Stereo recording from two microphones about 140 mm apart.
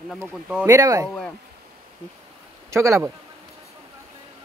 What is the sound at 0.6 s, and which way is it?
Speech, 25° right (ahead or behind).